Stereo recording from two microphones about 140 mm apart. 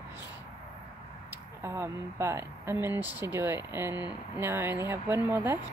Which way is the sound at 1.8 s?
20° right (ahead or behind).